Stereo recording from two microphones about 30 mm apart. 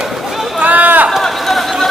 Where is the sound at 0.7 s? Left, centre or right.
Right.